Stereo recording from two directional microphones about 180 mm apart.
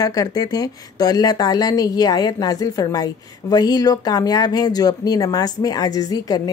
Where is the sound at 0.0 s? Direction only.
20° left (ahead or behind).